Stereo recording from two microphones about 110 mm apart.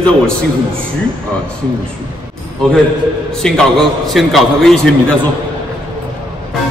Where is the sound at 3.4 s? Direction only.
5° left (ahead or behind).